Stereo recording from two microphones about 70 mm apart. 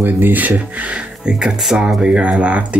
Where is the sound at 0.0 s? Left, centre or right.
Right.